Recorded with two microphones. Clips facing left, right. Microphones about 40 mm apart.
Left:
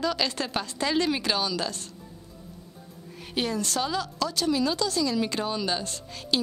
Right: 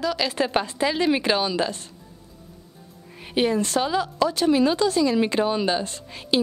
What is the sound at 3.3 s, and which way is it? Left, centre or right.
Speech, right.